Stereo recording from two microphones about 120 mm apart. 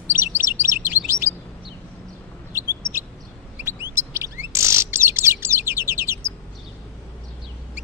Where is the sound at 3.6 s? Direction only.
20° right (ahead or behind).